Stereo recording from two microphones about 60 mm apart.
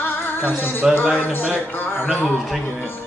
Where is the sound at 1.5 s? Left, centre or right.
Left.